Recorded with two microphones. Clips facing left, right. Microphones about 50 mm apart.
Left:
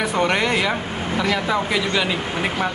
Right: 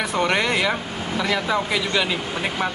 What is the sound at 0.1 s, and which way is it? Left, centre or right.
Speech, centre.